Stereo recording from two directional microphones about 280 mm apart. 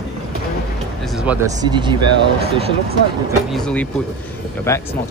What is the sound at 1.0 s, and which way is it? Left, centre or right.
Music, centre.